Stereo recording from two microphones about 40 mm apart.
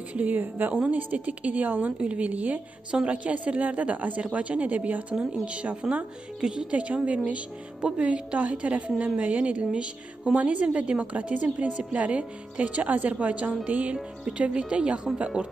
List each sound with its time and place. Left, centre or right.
0.1 s a woman's voice: right
0.8 s a woman's voice: right
2.9 s speech: right
3.3 s a woman's voice: right
6.4 s speech: centre
6.7 s a woman's voice: right
7.8 s speech: right
8.4 s a woman's voice: right
10.3 s a woman's voice: right
14.3 s speech: right